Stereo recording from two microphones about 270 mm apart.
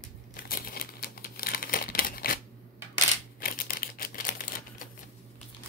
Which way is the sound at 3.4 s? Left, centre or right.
Left.